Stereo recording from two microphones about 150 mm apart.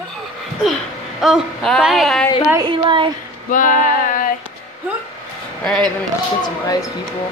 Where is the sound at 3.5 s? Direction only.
65° left (ahead or behind).